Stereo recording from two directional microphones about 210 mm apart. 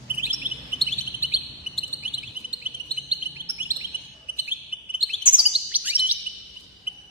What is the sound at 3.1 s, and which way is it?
Chirp, 25° left (ahead or behind).